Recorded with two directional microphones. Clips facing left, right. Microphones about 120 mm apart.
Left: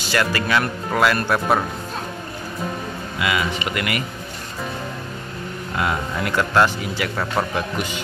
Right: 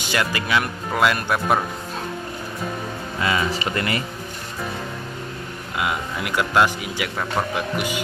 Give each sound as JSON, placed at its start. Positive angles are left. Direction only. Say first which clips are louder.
{"t": 0.1, "sound": "speech", "louder": "left 2 dB", "side_deg": -15}
{"t": 3.2, "sound": "speech", "louder": "even", "side_deg": -35}
{"t": 5.8, "sound": "speech", "louder": "left 2 dB", "side_deg": -10}